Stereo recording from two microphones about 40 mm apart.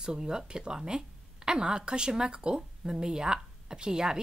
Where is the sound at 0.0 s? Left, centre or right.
Centre.